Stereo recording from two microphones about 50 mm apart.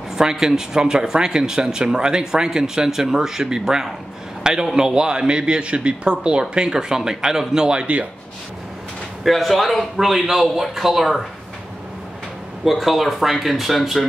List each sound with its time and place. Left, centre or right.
0.1 s a man's voice: centre
9.2 s speech: centre
12.6 s speech: centre